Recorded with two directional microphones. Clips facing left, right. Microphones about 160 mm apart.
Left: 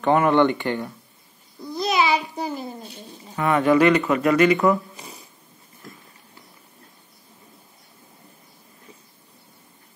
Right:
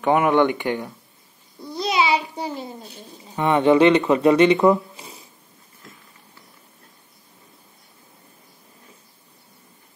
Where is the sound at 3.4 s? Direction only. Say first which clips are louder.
Right 2 dB; 25° right (ahead or behind).